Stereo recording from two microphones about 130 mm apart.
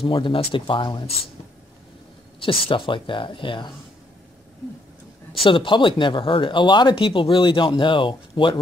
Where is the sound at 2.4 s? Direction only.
40° left (ahead or behind).